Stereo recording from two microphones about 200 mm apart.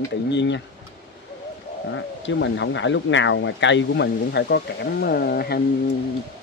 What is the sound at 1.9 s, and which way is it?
Speech, 65° left (ahead or behind).